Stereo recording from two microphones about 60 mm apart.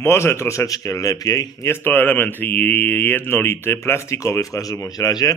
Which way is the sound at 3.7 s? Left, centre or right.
Left.